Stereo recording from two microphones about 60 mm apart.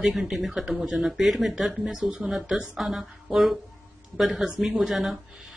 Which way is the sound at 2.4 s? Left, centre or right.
Centre.